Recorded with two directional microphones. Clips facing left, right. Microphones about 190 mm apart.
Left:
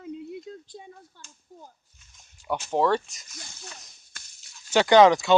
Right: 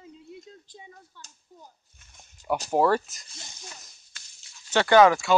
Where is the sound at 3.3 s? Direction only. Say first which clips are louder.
Left 2 dB; 20° right (ahead or behind).